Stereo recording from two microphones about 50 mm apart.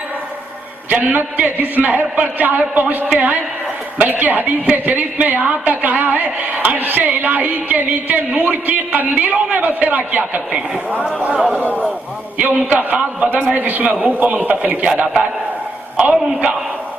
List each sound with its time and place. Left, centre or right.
0.8 s a woman's voice: right
11.3 s a man's voice: right
12.4 s a woman's voice: right